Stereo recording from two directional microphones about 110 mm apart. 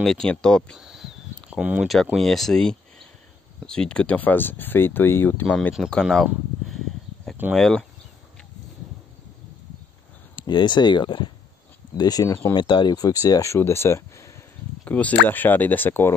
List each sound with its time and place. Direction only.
0.0 s speech: 5° left (ahead or behind)
0.7 s a sound: 5° right (ahead or behind)
1.6 s speech: 15° right (ahead or behind)
2.1 s speech: centre (ahead or behind); by 5.5 s 20° left (ahead or behind)
5.8 s speech: centre (ahead or behind)
7.5 s speech: 5° left (ahead or behind)
10.3 s speech: 45° left (ahead or behind)
12.0 s speech: 35° left (ahead or behind)
12.5 s speech: 50° left (ahead or behind); by 14.3 s 25° left (ahead or behind)
14.9 s speech: 15° left (ahead or behind)